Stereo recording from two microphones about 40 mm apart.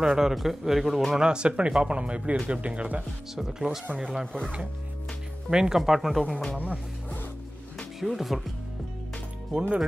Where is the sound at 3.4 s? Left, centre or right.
Centre.